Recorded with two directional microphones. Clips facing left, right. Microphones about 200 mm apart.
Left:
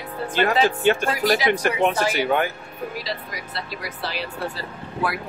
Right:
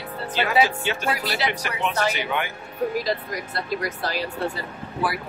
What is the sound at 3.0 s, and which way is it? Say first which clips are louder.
Speech: right 5 dB; 50° right (ahead or behind).